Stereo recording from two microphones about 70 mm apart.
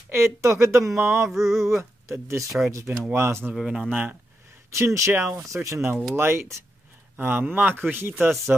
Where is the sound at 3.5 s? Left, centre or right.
Centre.